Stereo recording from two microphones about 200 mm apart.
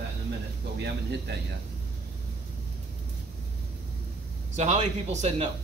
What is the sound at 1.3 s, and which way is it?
Speech, 55° right (ahead or behind).